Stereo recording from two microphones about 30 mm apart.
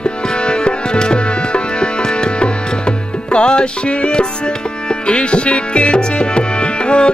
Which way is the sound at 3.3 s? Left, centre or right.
Left.